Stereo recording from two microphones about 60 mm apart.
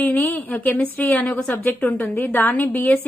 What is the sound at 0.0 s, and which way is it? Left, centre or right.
A woman's voice, left.